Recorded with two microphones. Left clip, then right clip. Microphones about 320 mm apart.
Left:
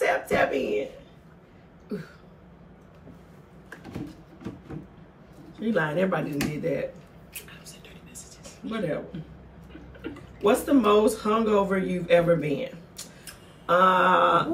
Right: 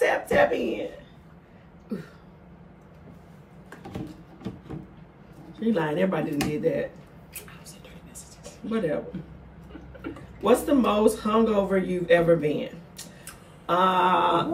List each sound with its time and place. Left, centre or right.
0.0 s a sound: centre
5.6 s a man's voice: centre
8.7 s a man's voice: centre
10.4 s a man's voice: centre